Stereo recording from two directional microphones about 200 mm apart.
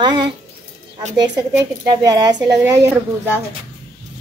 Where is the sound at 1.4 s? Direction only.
15° right (ahead or behind).